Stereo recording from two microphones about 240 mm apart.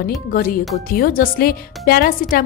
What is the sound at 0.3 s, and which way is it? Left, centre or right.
A woman's voice, left.